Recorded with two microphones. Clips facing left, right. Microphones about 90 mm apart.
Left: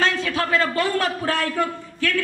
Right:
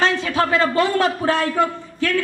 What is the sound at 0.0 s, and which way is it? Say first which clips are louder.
A man's voice: right 3 dB; 25° right (ahead or behind).